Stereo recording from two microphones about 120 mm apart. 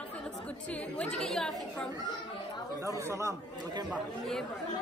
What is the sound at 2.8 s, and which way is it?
Speech, 25° right (ahead or behind).